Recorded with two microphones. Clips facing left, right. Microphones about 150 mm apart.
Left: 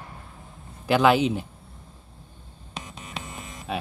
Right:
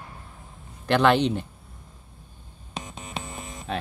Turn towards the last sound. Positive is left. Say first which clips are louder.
# even
turn(degrees=5)  # may be behind; listen again after turning